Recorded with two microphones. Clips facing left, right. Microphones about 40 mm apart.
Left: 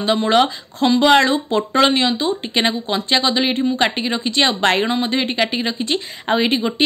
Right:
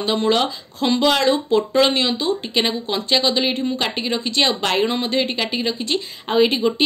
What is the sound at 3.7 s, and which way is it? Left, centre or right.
A woman's voice, left.